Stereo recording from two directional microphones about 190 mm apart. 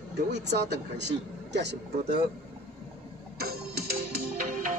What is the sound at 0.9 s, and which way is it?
Speech, 65° right (ahead or behind).